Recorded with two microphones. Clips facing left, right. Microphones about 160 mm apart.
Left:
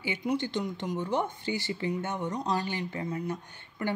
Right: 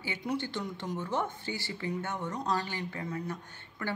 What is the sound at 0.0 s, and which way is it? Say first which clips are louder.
Speech: left 4 dB; 15° left (ahead or behind).